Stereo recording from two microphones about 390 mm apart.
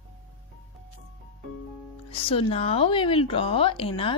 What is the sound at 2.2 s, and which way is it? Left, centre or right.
A woman's voice, centre.